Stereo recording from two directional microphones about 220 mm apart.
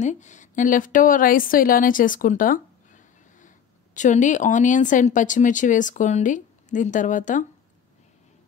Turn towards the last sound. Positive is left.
turn(degrees=35)  # may be behind; listen again after turning